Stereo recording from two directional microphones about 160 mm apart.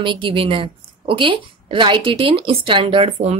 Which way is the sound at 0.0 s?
30° right (ahead or behind).